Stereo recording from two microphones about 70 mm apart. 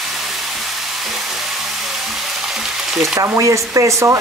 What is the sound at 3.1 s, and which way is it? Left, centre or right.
Speech, right.